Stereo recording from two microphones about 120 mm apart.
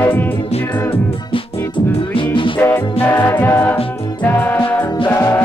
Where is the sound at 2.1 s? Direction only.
45° left (ahead or behind).